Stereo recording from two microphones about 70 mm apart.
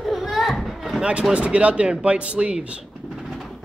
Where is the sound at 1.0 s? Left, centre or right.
Centre.